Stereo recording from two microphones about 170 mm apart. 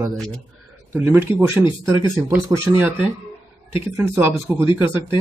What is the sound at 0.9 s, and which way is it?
Speech, 10° right (ahead or behind).